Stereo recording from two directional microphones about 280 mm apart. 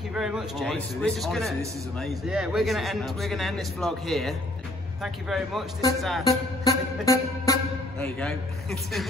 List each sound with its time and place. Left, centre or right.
0.1 s a man's voice: centre
6.2 s music: centre
8.0 s a man's voice: centre